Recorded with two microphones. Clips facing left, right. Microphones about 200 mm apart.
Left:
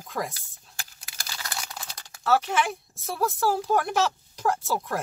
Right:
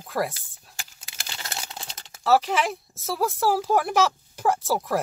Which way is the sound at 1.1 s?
25° right (ahead or behind).